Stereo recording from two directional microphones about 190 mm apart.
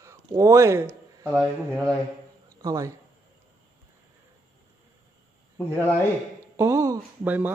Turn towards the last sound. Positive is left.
turn(degrees=-10)  # may be behind; listen again after turning